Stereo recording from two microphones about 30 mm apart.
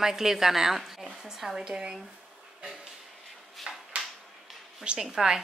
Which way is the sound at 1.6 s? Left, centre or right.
Right.